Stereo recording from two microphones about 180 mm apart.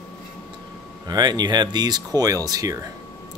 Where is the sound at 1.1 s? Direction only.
20° right (ahead or behind).